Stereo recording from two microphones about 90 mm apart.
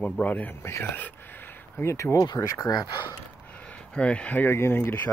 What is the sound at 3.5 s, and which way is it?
Speech, 15° left (ahead or behind).